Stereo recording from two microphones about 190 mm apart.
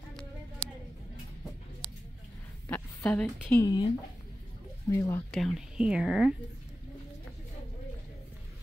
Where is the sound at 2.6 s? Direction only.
10° left (ahead or behind).